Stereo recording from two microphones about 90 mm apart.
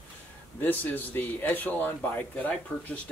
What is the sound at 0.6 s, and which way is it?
Speech, 20° left (ahead or behind).